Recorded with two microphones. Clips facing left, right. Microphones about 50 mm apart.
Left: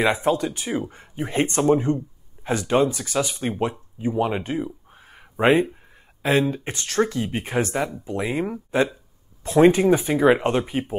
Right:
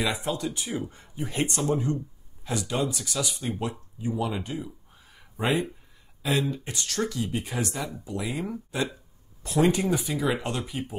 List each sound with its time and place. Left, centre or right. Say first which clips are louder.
0.0 s speech: left 8 dB; left